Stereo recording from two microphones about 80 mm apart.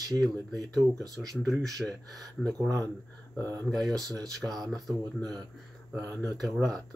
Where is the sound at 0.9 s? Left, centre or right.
Right.